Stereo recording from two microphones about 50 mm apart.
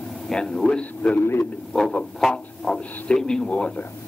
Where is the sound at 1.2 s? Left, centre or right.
Left.